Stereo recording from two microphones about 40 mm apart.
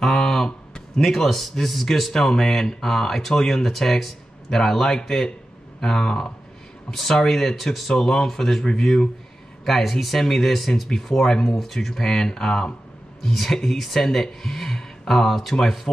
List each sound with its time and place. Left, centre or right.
0.0 s a sound: centre
1.0 s speech: centre
7.9 s speech: centre